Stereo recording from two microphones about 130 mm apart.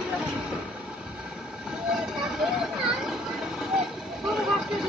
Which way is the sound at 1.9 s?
5° right (ahead or behind).